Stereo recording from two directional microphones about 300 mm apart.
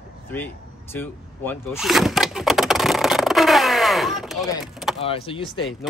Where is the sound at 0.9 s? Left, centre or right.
Centre.